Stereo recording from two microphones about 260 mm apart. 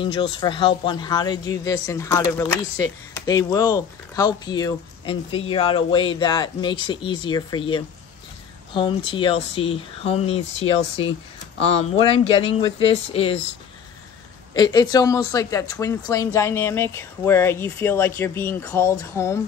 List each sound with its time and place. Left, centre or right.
0.0 s speech: centre
14.5 s speech: centre